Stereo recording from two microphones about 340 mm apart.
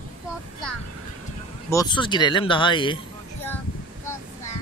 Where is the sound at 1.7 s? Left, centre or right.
Centre.